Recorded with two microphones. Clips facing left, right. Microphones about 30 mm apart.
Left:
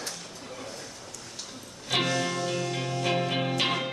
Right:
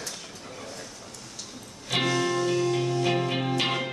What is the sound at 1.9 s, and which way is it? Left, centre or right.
Music, centre.